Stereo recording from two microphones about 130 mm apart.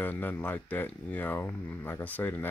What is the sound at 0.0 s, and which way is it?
Speech, 15° left (ahead or behind).